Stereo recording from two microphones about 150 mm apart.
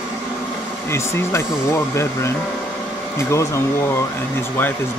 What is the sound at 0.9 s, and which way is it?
Speech, 20° left (ahead or behind).